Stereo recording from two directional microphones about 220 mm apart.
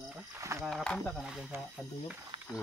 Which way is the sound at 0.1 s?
10° right (ahead or behind).